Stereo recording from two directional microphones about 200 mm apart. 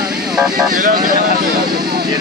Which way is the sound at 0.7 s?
45° right (ahead or behind).